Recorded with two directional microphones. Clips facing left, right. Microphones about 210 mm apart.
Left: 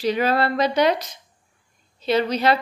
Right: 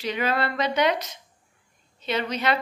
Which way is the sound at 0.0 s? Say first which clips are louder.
Left 5 dB; 35° left (ahead or behind).